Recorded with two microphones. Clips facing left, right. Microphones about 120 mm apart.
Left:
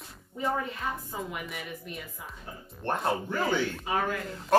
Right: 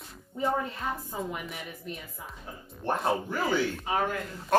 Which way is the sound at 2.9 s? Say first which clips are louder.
Right 1 dB; 5° right (ahead or behind).